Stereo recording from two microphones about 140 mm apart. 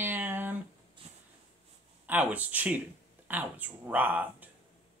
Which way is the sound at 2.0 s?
10° right (ahead or behind).